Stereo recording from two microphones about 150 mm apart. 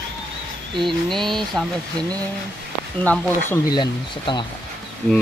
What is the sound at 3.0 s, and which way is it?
Speech, 10° left (ahead or behind).